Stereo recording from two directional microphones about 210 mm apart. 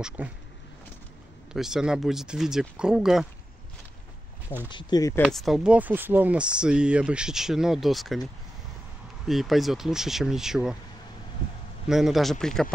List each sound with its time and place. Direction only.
1.5 s speech: 5° right (ahead or behind)
4.6 s speech: 20° left (ahead or behind)
5.2 s speech: centre (ahead or behind)
9.3 s speech: centre (ahead or behind)
11.9 s speech: centre (ahead or behind)